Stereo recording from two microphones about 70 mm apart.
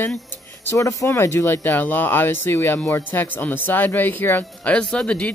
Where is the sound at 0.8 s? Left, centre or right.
Left.